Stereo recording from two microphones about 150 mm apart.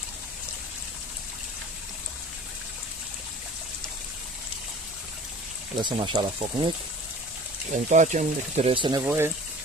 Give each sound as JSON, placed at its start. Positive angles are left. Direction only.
{"t": 5.8, "sound": "speech", "side_deg": -30}
{"t": 7.7, "sound": "speech", "side_deg": -55}
{"t": 9.0, "sound": "speech", "side_deg": -15}